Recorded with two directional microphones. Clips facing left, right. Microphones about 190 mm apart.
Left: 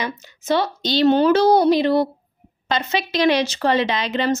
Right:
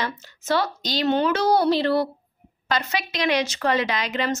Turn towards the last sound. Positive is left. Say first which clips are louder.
# left 4 dB
turn(degrees=30)  # may be behind; listen again after turning